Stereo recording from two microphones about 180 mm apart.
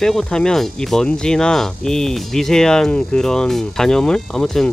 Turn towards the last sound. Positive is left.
turn(degrees=5)  # may be behind; listen again after turning